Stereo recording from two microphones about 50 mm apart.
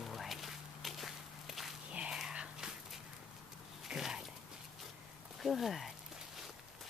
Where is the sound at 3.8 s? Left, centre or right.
Centre.